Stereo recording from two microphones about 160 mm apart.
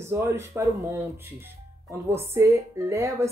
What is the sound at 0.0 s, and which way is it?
Speech, 15° right (ahead or behind).